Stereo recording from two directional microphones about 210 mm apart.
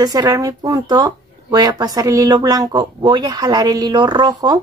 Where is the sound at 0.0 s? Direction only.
20° right (ahead or behind).